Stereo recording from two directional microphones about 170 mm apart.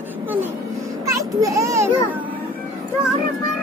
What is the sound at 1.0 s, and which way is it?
Children playing, 20° right (ahead or behind).